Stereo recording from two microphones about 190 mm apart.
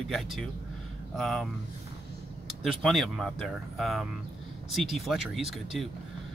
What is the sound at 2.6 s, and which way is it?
Speech, centre (ahead or behind).